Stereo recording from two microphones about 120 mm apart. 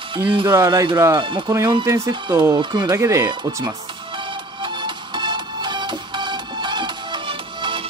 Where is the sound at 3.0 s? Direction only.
25° right (ahead or behind).